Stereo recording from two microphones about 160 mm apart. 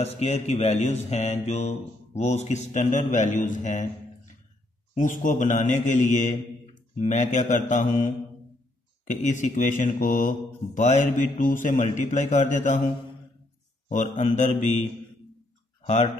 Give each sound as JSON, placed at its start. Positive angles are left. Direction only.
{"t": 0.0, "sound": "mantra", "side_deg": 45}
{"t": 4.9, "sound": "mantra", "side_deg": 55}
{"t": 13.8, "sound": "mantra", "side_deg": 50}
{"t": 15.8, "sound": "speech", "side_deg": 45}